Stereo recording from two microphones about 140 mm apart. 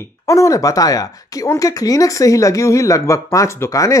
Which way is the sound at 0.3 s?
25° left (ahead or behind).